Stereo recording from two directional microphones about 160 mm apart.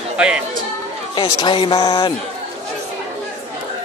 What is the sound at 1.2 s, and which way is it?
Speech, 30° left (ahead or behind).